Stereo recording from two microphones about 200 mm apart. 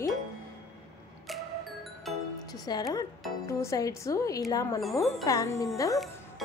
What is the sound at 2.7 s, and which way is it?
Speech, 20° left (ahead or behind).